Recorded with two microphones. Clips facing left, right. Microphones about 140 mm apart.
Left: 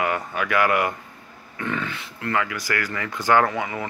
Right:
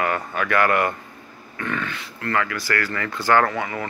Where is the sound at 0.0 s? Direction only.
15° left (ahead or behind).